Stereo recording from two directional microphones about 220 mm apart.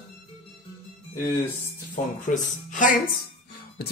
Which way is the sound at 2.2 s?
35° left (ahead or behind).